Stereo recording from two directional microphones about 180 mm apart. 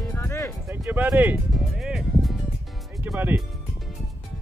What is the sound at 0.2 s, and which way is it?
Music, 15° left (ahead or behind).